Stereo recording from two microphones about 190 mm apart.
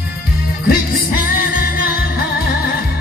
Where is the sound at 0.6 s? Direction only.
50° left (ahead or behind).